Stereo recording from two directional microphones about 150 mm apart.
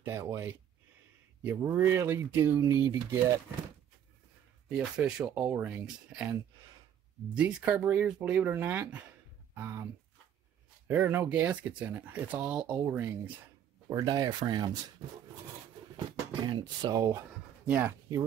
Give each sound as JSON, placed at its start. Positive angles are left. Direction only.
{"t": 0.0, "sound": "speech", "side_deg": -15}
{"t": 4.6, "sound": "speech", "side_deg": -5}
{"t": 7.3, "sound": "speech", "side_deg": -10}
{"t": 10.9, "sound": "speech", "side_deg": -10}
{"t": 13.8, "sound": "speech", "side_deg": -25}
{"t": 16.1, "sound": "speech", "side_deg": -30}
{"t": 17.6, "sound": "speech", "side_deg": -10}